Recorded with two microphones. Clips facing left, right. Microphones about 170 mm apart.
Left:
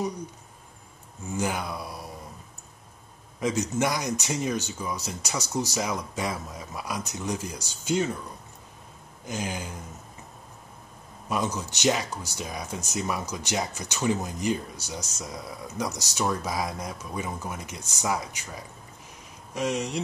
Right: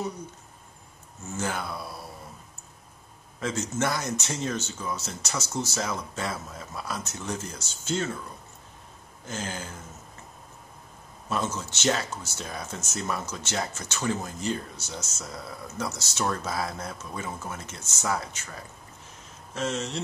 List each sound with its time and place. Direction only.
1.2 s speech: 15° left (ahead or behind)
3.3 s speech: 15° left (ahead or behind)
9.2 s speech: 15° left (ahead or behind)
11.2 s speech: 15° left (ahead or behind)